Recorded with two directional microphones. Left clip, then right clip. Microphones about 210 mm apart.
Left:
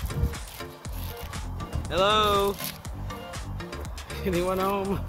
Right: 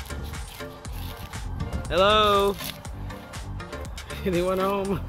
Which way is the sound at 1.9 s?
30° right (ahead or behind).